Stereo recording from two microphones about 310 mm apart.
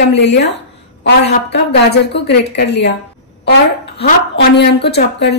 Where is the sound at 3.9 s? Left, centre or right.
Left.